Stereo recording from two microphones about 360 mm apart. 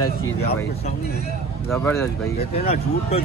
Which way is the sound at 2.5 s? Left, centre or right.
Centre.